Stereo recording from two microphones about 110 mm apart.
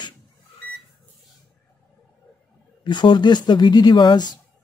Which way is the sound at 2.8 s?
45° left (ahead or behind).